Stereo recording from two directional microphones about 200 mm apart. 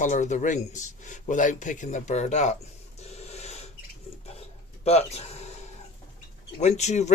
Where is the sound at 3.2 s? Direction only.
30° left (ahead or behind).